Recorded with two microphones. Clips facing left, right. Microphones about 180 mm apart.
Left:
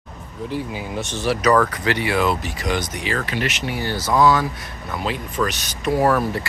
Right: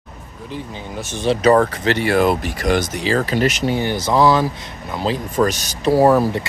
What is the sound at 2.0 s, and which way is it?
Speech, 50° right (ahead or behind).